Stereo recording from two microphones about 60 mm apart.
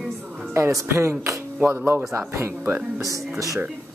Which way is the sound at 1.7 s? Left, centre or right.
Right.